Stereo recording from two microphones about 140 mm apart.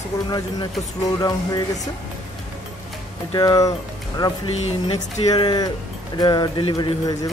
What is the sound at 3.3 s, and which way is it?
Speech, 25° left (ahead or behind).